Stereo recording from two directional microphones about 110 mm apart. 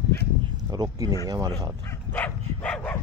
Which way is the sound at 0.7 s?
35° right (ahead or behind).